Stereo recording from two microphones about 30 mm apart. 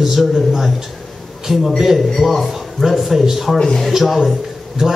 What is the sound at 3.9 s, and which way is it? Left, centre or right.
Speech, centre.